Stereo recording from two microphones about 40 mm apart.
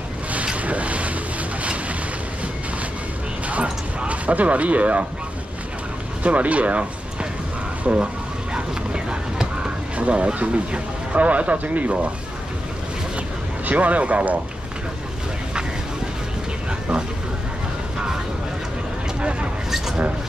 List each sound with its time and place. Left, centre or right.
0.6 s vehicle: right
4.1 s speech: right
6.2 s speech: right
8.5 s a sound: right
9.9 s speech: right
13.7 s speech: right